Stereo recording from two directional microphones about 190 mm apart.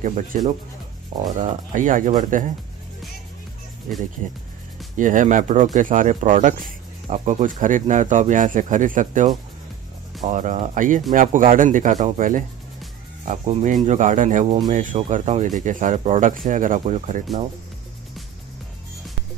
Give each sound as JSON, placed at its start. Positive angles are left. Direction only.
{"t": 0.0, "sound": "speech", "side_deg": -40}
{"t": 1.4, "sound": "speech", "side_deg": -45}
{"t": 3.9, "sound": "speech", "side_deg": -45}